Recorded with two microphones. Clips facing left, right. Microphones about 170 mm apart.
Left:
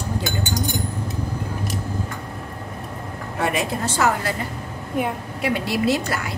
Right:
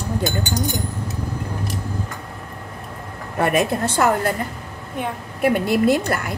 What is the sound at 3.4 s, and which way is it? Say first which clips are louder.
Speech: right 4 dB; 55° right (ahead or behind).